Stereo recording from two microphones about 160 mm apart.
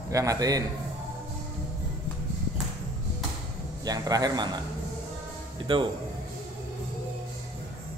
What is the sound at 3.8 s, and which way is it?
Speech, 25° right (ahead or behind).